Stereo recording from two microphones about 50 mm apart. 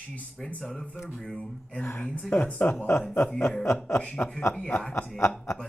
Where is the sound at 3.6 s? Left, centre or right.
Left.